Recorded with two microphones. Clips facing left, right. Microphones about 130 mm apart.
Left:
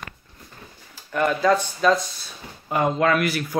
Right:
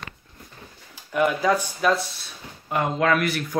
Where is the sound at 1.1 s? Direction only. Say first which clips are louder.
Left 1 dB; 10° right (ahead or behind).